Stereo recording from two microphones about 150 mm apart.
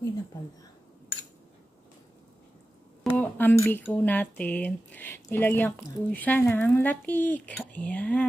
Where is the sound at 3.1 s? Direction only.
10° left (ahead or behind).